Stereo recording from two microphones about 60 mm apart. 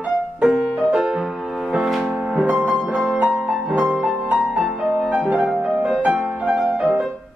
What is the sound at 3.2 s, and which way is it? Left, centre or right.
Music, centre.